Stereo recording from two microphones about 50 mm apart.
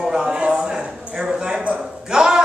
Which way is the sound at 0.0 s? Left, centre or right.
Centre.